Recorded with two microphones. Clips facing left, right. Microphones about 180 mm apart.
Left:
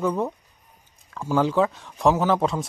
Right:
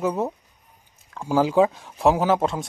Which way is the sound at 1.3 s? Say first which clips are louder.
Right 2 dB; 10° right (ahead or behind).